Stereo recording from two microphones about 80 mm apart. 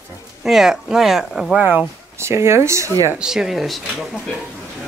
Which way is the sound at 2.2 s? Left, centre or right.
Right.